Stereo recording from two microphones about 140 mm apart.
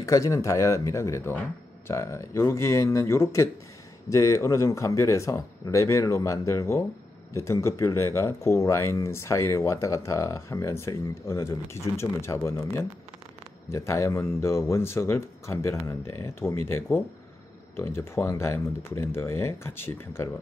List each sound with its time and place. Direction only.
0.0 s speech: 20° left (ahead or behind)